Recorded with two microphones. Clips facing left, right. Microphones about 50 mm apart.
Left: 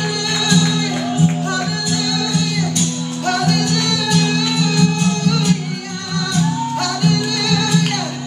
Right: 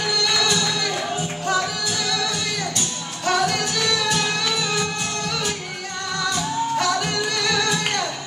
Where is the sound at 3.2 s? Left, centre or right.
Centre.